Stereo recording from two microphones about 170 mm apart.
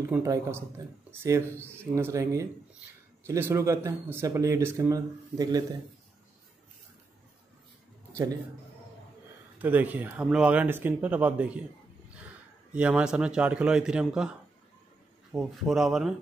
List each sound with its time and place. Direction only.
0.1 s speech: 15° right (ahead or behind)
9.6 s speech: 10° right (ahead or behind)
12.7 s a man's voice: 5° right (ahead or behind)
15.3 s a man's voice: centre (ahead or behind)